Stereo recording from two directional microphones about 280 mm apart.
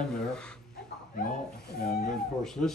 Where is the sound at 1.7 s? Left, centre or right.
Left.